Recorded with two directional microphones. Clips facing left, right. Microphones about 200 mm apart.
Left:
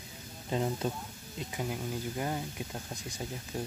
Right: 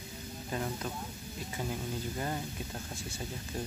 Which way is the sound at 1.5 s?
10° left (ahead or behind).